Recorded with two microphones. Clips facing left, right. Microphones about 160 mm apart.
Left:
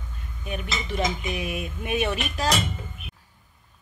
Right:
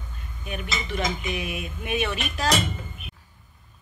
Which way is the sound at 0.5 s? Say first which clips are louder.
Even; 35° left (ahead or behind).